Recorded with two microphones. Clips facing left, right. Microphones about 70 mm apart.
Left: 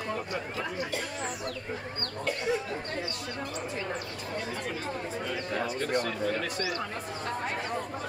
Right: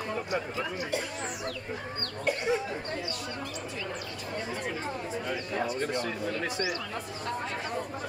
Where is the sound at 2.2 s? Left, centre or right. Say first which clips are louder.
Right 2 dB; right.